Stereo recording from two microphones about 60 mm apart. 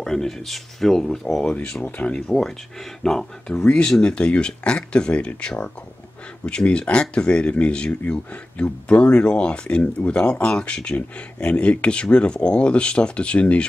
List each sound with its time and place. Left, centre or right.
0.0 s speech: centre; by 2.1 s left
2.1 s speech: centre